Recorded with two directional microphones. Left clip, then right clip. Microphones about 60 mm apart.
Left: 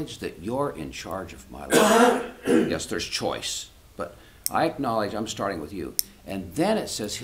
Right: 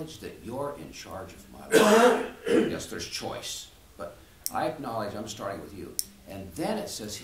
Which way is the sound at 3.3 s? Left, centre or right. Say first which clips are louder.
Left 6 dB; left.